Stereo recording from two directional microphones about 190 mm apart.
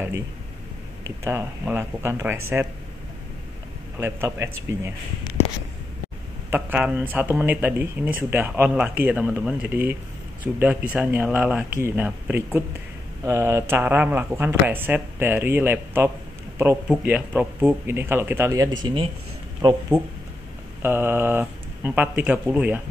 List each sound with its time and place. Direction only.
1.2 s speech: 15° right (ahead or behind)
4.0 s speech: 15° right (ahead or behind)
6.5 s speech: 10° right (ahead or behind)
20.8 s speech: 10° right (ahead or behind)